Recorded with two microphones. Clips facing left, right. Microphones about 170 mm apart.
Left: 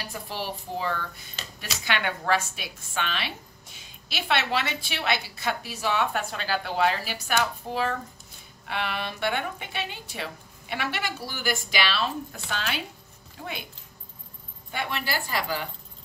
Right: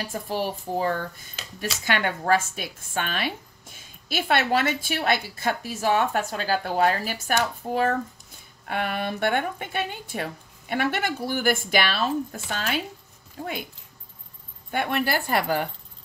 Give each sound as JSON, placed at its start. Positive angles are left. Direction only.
{"t": 0.0, "sound": "a woman's voice", "side_deg": -45}
{"t": 14.7, "sound": "speech", "side_deg": -55}